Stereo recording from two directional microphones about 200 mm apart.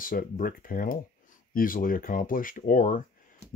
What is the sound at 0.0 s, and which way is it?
Speech, 45° left (ahead or behind).